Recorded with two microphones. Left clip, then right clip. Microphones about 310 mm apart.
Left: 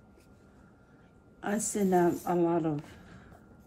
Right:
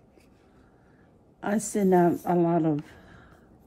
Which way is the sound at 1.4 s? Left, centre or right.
Right.